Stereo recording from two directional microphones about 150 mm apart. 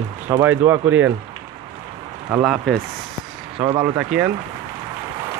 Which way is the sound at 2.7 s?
5° left (ahead or behind).